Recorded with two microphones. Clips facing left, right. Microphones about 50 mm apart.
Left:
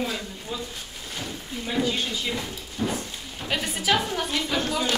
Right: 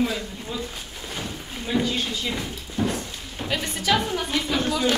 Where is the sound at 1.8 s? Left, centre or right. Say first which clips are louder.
Even; centre.